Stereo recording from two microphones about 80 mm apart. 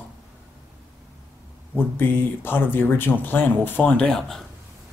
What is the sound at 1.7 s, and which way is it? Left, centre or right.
Speech, left.